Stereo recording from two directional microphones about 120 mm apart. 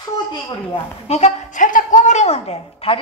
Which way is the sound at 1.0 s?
60° left (ahead or behind).